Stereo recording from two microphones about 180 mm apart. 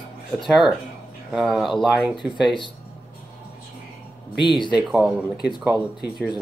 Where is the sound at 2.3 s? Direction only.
30° left (ahead or behind).